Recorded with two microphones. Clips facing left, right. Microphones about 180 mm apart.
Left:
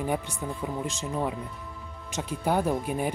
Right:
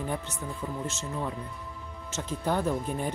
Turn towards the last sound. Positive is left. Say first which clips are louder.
# left 2 dB
turn(degrees=10)  # may be behind; listen again after turning